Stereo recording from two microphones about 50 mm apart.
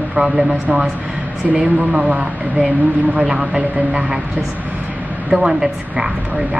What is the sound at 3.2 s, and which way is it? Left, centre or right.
Speech, centre.